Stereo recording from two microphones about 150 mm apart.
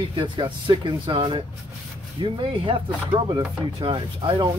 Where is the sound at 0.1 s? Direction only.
35° right (ahead or behind).